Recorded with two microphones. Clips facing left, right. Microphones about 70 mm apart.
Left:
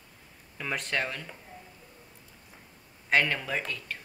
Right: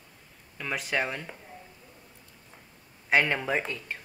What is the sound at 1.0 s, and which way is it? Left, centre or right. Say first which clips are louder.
Speech: right 2 dB; centre.